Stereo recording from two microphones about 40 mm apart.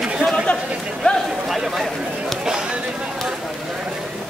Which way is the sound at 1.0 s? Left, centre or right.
Left.